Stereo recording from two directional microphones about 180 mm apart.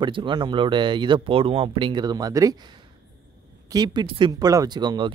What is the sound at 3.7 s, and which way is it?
Speech, 25° right (ahead or behind).